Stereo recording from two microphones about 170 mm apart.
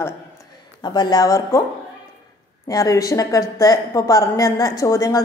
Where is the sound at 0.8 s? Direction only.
25° left (ahead or behind).